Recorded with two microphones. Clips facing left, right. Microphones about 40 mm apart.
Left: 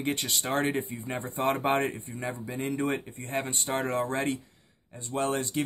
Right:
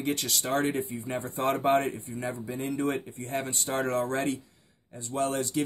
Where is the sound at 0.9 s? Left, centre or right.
Centre; by 1.9 s left.